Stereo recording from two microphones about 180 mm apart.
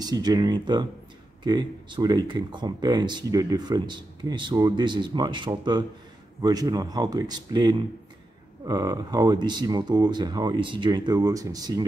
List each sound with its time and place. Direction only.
0.0 s speech: 20° right (ahead or behind)